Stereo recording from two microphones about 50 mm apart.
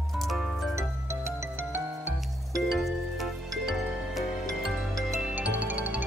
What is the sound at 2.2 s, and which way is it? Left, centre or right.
Music, centre.